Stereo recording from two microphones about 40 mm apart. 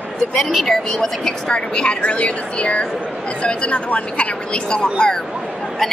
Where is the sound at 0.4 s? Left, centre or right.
Centre.